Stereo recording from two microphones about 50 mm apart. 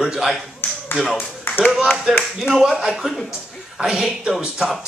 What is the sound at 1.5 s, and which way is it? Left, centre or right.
Clapping, left.